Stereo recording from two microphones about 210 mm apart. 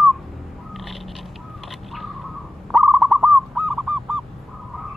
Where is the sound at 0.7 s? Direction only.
Centre (ahead or behind).